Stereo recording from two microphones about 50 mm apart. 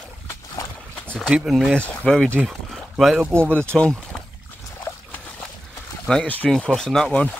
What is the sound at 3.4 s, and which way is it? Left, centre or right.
Speech, left.